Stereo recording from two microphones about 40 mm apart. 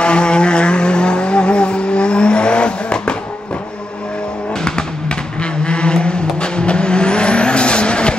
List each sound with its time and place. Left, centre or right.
0.0 s vehicle: left
5.4 s vehicle: left